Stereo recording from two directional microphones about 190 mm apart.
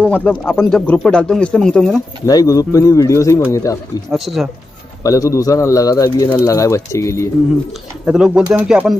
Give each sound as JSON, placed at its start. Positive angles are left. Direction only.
{"t": 0.1, "sound": "speech", "side_deg": 5}
{"t": 2.2, "sound": "speech", "side_deg": 20}
{"t": 4.1, "sound": "speech", "side_deg": 0}
{"t": 5.0, "sound": "speech", "side_deg": 20}
{"t": 8.0, "sound": "speech", "side_deg": -5}